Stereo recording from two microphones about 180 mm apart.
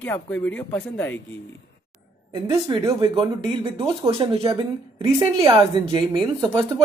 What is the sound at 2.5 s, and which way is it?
Speech, 15° right (ahead or behind).